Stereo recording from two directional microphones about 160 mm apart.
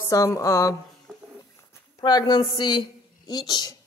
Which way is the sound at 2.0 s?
25° left (ahead or behind).